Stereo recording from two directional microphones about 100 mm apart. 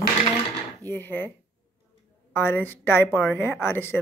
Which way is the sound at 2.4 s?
20° left (ahead or behind).